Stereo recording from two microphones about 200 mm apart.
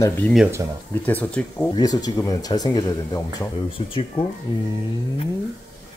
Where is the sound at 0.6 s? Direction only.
15° right (ahead or behind).